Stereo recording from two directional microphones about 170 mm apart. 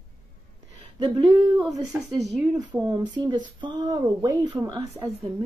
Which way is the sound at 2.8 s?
25° right (ahead or behind).